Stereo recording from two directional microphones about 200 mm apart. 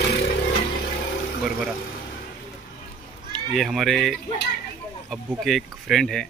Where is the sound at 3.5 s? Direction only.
Centre (ahead or behind).